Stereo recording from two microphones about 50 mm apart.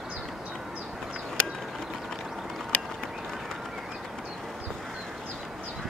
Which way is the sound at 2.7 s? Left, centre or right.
Left.